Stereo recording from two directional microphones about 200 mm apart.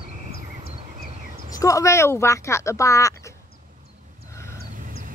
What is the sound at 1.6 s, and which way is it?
Speech, 15° left (ahead or behind).